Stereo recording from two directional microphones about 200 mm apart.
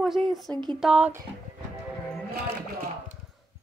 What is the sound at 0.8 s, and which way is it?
Speech, 5° right (ahead or behind).